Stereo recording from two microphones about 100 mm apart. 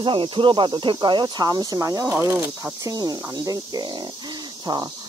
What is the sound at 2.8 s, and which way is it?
Speech, 40° right (ahead or behind).